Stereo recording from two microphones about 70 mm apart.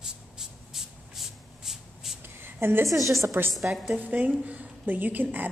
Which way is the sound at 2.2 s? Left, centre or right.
Right.